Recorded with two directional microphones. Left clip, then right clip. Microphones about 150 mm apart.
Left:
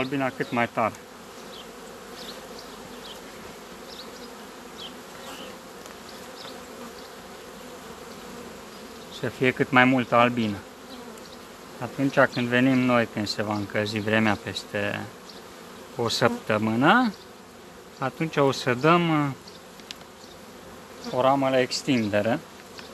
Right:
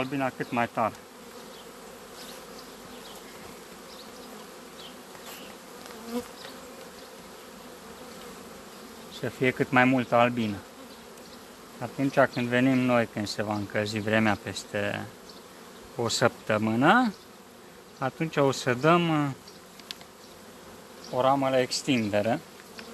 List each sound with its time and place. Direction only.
0.0 s speech: 5° right (ahead or behind)
9.1 s speech: 10° right (ahead or behind)
11.8 s speech: 10° right (ahead or behind)
21.1 s speech: 20° right (ahead or behind)